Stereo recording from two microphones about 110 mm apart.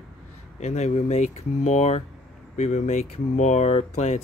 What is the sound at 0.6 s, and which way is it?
Speech, 90° left.